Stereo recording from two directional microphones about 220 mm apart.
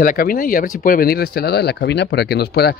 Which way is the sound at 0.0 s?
40° left (ahead or behind).